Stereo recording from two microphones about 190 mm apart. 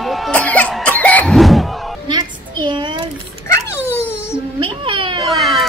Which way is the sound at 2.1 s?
25° right (ahead or behind).